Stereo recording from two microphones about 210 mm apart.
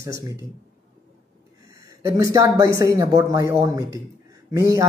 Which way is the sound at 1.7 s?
15° right (ahead or behind).